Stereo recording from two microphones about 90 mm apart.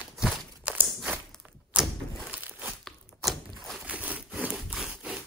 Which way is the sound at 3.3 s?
5° left (ahead or behind).